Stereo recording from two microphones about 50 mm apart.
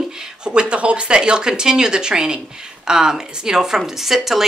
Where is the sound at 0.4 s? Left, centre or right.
Centre.